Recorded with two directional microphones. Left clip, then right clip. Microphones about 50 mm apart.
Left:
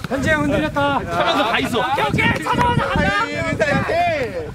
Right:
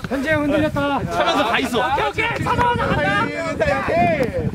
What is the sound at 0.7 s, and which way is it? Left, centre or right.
Speech, left.